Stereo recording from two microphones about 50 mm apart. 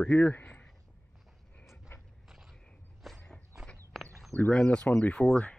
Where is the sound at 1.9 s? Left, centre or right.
Left.